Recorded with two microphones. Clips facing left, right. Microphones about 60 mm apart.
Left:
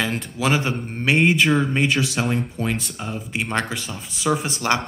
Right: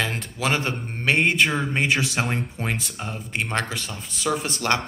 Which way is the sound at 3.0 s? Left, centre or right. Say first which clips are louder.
Left 2 dB; centre.